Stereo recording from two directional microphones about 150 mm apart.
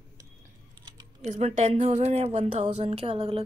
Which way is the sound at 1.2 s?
45° right (ahead or behind).